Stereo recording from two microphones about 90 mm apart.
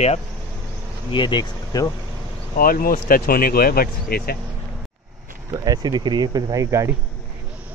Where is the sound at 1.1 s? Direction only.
60° left (ahead or behind).